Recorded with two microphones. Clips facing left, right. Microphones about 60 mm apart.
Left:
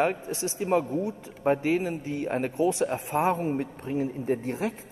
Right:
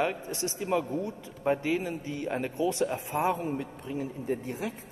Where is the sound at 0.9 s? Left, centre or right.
Centre.